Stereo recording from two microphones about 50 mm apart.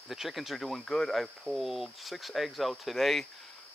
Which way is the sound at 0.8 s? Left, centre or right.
Centre.